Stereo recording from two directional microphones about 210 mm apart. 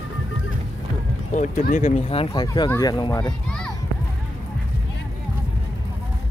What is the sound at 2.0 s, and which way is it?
Speech, 25° left (ahead or behind).